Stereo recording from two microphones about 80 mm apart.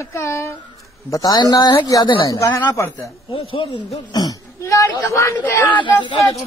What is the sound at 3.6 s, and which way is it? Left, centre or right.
Speech, left.